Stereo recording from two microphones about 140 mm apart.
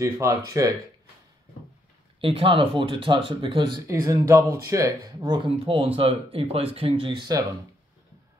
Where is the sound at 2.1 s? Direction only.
40° right (ahead or behind).